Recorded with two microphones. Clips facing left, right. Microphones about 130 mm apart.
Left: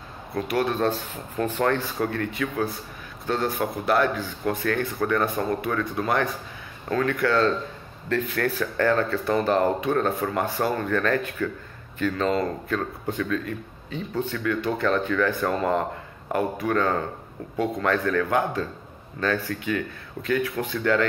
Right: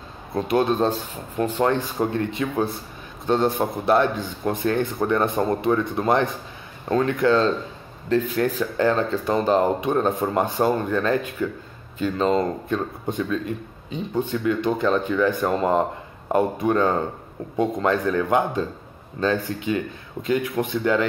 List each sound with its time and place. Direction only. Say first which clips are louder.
0.3 s a man's voice: right 4 dB; 25° right (ahead or behind)